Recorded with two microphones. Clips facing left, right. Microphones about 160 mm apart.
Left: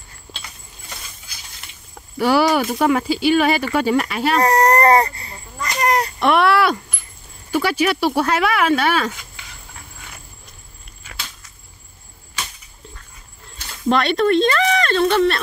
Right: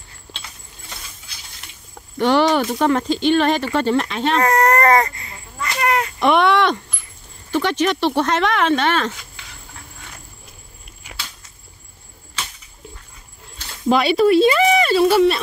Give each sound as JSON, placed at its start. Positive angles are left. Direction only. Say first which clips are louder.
{"t": 2.1, "sound": "speech", "louder": "even", "side_deg": 10}
{"t": 4.4, "sound": "a sound", "louder": "left 1 dB", "side_deg": 35}
{"t": 6.1, "sound": "speech", "louder": "right 1 dB", "side_deg": 0}
{"t": 13.8, "sound": "speech", "louder": "right 2 dB", "side_deg": -5}